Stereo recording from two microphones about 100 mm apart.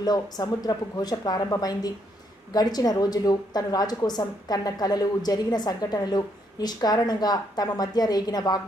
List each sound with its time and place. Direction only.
0.0 s a woman's voice: 40° left (ahead or behind)